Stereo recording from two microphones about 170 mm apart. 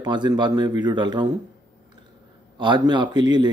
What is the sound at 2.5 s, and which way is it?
Speech, 25° right (ahead or behind).